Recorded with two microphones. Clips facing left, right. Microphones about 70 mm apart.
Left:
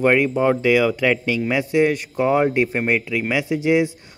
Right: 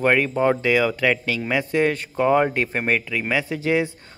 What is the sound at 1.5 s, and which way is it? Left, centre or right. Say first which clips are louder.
A man's voice: left 2 dB; centre.